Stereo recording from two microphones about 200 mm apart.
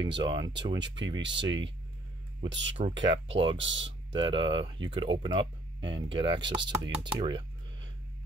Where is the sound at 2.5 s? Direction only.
65° right (ahead or behind).